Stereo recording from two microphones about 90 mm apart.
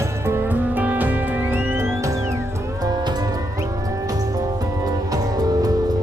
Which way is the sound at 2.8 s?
55° right (ahead or behind).